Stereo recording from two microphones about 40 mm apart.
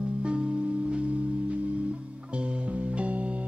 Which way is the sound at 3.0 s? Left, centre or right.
Right.